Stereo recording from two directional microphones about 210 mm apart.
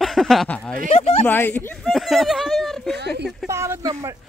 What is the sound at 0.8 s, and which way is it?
Speech, 30° left (ahead or behind).